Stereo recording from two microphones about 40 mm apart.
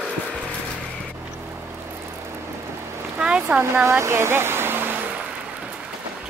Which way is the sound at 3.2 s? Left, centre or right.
Right.